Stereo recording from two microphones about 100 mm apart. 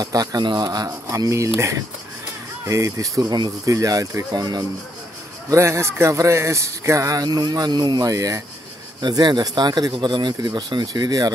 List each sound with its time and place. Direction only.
0.0 s speech: 40° right (ahead or behind)
2.6 s speech: 35° right (ahead or behind)
4.3 s speech: 45° right (ahead or behind)
5.5 s speech: 30° right (ahead or behind)
9.0 s speech: 45° right (ahead or behind)